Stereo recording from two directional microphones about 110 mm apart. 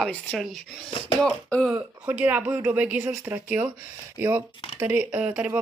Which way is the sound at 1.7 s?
15° right (ahead or behind).